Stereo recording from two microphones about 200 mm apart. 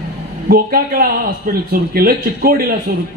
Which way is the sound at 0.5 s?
45° right (ahead or behind).